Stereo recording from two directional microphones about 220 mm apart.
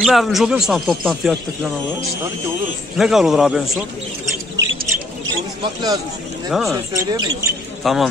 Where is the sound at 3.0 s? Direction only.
Centre (ahead or behind).